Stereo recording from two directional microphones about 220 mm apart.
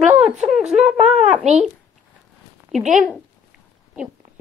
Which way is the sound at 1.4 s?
30° right (ahead or behind).